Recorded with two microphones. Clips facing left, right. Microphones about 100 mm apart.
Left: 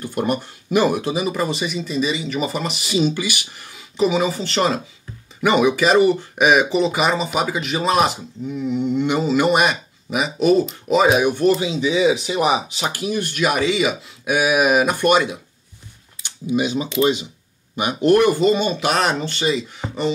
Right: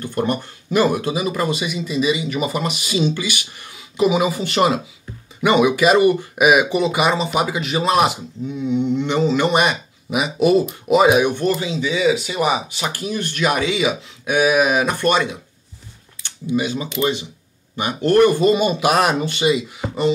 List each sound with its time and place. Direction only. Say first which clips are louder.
0.0 s speech: even; 10° left (ahead or behind)
3.7 s speech: right 1 dB; 5° right (ahead or behind)
11.3 s speech: left 3 dB; 15° left (ahead or behind)
12.9 s speech: left 1 dB; 10° left (ahead or behind)
16.5 s speech: left 2 dB; 20° left (ahead or behind)
18.4 s speech: right 2 dB; 10° right (ahead or behind)